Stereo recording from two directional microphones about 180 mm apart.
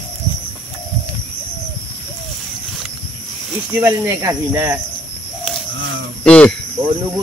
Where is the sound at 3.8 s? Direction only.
15° right (ahead or behind).